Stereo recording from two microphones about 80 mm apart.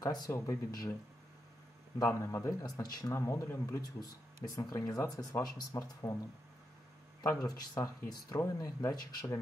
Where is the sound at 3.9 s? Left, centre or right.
Left.